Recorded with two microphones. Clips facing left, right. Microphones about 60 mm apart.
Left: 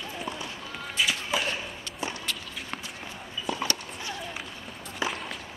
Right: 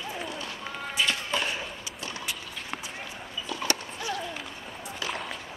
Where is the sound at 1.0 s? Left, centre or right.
Centre.